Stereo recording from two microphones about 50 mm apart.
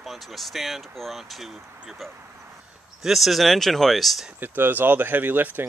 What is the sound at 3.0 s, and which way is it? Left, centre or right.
Speech, centre.